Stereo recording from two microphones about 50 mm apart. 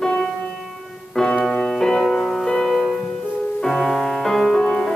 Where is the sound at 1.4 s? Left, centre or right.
Centre.